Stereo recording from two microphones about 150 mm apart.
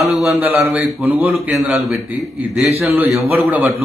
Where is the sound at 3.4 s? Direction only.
10° right (ahead or behind).